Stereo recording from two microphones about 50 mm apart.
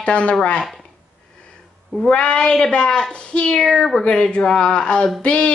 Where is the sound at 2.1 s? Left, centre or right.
Left.